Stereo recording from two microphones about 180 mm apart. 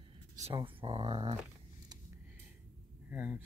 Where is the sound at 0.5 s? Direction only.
30° right (ahead or behind).